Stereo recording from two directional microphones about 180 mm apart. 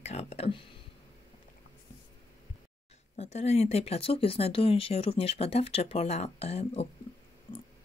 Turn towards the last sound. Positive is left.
turn(degrees=35)  # may be behind; listen again after turning